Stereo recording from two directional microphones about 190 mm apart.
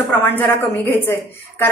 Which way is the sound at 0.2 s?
10° left (ahead or behind).